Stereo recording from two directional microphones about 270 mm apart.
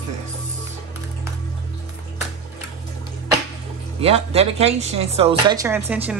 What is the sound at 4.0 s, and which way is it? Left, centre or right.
A woman's voice, right.